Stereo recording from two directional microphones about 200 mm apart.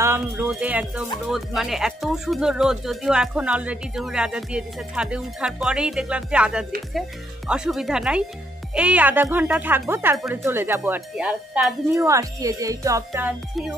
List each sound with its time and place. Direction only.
0.0 s speech: 10° right (ahead or behind)
12.1 s speech: 15° right (ahead or behind)